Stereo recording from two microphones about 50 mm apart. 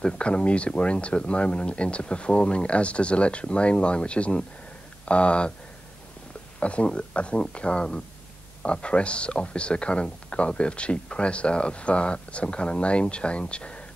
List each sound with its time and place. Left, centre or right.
0.0 s speech: left
6.6 s speech: left